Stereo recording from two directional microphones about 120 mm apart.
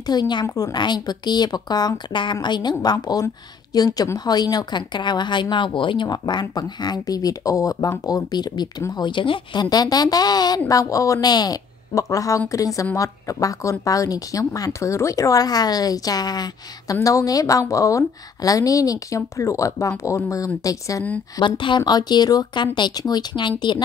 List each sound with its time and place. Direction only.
0.0 s a woman's voice: 35° left (ahead or behind)
21.4 s a woman's voice: 45° left (ahead or behind)